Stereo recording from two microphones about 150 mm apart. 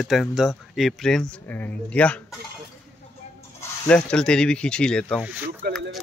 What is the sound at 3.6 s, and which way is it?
Speech, 10° left (ahead or behind).